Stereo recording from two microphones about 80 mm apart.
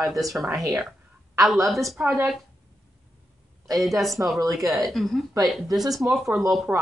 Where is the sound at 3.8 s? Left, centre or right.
Centre.